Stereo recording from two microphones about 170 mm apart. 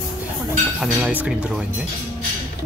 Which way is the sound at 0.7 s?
5° right (ahead or behind).